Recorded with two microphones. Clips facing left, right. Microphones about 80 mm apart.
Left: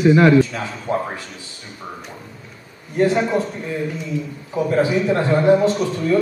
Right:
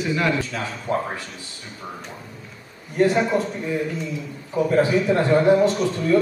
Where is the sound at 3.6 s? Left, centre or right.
Centre.